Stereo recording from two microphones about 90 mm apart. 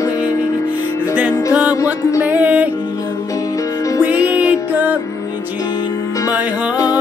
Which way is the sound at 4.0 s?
20° right (ahead or behind).